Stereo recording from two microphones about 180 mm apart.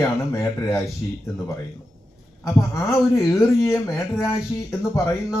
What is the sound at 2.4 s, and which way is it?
Speech, 15° left (ahead or behind).